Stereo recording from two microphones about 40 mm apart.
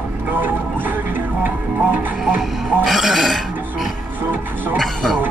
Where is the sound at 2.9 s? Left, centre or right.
Centre.